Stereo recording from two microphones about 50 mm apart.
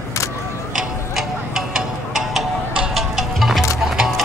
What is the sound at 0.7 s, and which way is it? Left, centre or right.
Tick-tock, centre.